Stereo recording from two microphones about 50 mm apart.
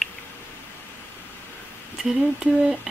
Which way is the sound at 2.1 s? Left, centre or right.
Right.